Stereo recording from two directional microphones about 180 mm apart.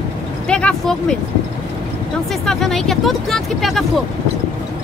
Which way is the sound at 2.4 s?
Centre (ahead or behind).